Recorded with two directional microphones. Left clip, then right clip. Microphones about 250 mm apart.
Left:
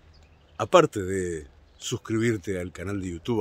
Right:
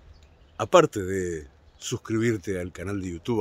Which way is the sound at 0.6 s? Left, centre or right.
Centre.